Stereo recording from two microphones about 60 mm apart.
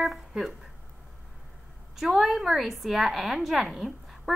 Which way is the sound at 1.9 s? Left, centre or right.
Centre.